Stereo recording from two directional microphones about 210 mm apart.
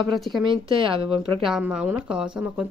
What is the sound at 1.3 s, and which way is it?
Speech, centre (ahead or behind).